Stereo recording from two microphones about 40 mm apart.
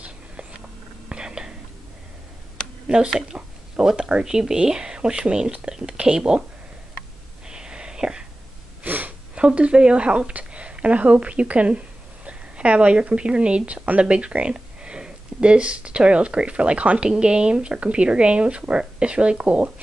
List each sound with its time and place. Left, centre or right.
1.0 s whispering: right
3.1 s speech: centre
7.4 s whispering: right
8.8 s a sound: right
9.3 s a woman's voice: right